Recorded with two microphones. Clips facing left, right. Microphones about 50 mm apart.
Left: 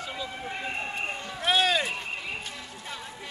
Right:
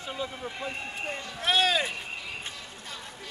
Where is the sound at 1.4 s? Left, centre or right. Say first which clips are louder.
Left 1 dB; centre.